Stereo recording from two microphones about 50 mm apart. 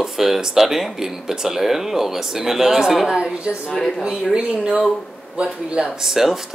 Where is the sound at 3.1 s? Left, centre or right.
Centre.